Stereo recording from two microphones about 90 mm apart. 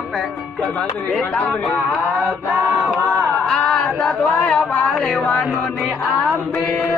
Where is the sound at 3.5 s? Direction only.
5° left (ahead or behind).